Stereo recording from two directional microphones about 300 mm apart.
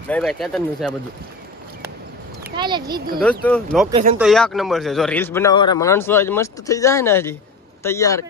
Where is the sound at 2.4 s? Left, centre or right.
Centre.